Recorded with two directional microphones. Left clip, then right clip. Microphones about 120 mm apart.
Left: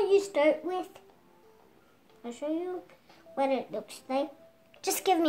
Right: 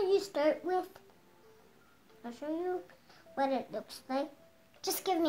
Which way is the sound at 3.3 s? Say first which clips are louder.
Left 4 dB; 20° left (ahead or behind).